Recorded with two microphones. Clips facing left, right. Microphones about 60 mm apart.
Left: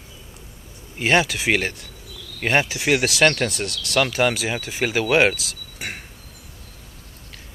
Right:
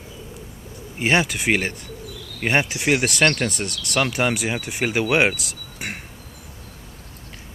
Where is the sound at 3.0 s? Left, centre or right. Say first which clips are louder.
Left 1 dB; centre.